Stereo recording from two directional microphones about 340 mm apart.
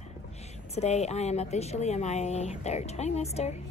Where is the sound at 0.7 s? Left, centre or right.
Centre.